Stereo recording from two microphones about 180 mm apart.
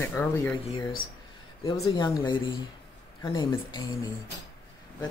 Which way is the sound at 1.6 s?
25° left (ahead or behind).